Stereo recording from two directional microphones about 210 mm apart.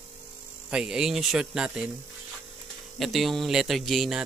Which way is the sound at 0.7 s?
5° right (ahead or behind).